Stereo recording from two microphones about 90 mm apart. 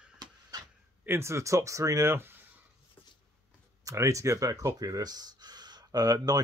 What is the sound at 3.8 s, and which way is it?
Speech, 35° right (ahead or behind).